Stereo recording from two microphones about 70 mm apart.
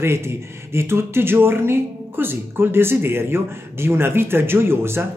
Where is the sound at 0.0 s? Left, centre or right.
Right.